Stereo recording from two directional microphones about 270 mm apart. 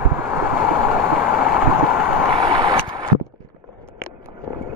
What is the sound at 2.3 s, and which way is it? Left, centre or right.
Vehicle, centre.